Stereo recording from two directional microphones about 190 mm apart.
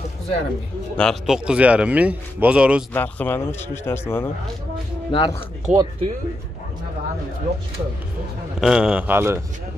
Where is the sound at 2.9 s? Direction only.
10° left (ahead or behind).